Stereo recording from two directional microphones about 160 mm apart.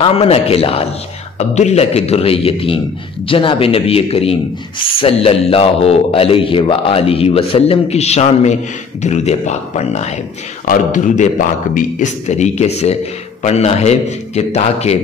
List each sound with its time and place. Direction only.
0.0 s a man's voice: 35° left (ahead or behind)